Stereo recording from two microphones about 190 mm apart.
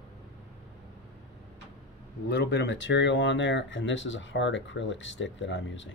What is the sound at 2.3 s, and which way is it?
Speech, 65° left (ahead or behind).